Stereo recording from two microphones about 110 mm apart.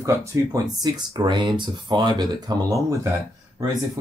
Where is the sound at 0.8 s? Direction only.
40° right (ahead or behind).